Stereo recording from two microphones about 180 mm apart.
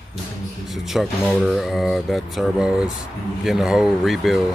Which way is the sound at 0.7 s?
Centre (ahead or behind).